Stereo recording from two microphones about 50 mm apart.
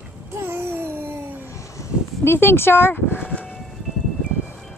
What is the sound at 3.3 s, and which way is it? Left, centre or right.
Train, left.